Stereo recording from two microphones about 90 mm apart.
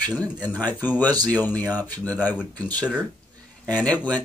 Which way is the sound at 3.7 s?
15° left (ahead or behind).